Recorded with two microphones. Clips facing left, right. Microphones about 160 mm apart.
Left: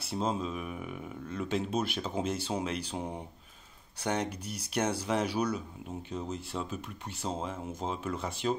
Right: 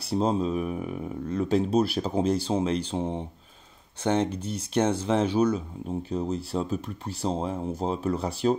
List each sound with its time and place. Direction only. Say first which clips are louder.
0.1 s speech: right 8 dB; 35° right (ahead or behind)